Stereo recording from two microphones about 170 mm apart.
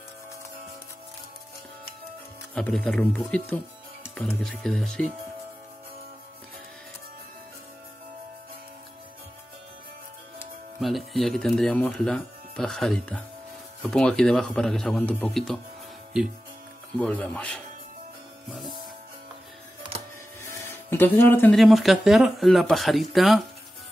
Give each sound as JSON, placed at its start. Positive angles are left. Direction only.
{"t": 2.5, "sound": "speech", "side_deg": 5}
{"t": 10.8, "sound": "speech", "side_deg": 0}
{"t": 17.0, "sound": "speech", "side_deg": 10}
{"t": 19.9, "sound": "a sound", "side_deg": -35}
{"t": 20.5, "sound": "a sound", "side_deg": 15}
{"t": 21.5, "sound": "speech", "side_deg": 0}